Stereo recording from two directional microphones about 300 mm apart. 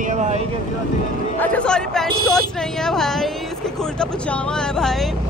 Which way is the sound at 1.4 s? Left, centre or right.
Centre.